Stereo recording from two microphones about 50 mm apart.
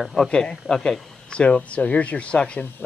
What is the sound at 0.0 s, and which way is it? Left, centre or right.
Speech, centre.